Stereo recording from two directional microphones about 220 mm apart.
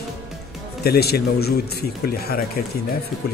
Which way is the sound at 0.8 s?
45° left (ahead or behind).